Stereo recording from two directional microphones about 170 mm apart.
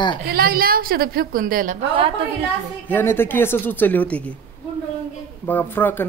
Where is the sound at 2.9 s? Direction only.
15° left (ahead or behind).